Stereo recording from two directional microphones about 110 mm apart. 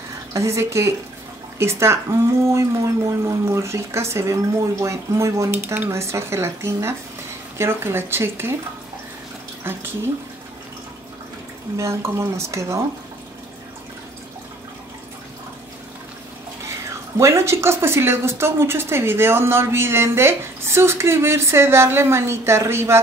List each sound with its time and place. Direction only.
0.3 s a woman's voice: 25° right (ahead or behind)
9.6 s a woman's voice: 20° right (ahead or behind)
11.7 s a woman's voice: 25° right (ahead or behind)
17.2 s a woman's voice: 25° right (ahead or behind)